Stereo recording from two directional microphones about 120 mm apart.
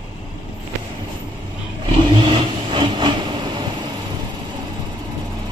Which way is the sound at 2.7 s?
40° right (ahead or behind).